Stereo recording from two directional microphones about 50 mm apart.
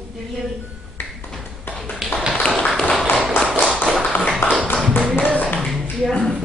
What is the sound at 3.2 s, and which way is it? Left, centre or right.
Tap, centre.